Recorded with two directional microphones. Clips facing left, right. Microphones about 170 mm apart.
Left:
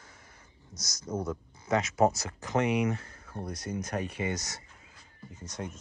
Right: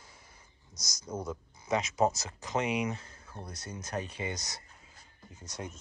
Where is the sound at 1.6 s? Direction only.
15° right (ahead or behind).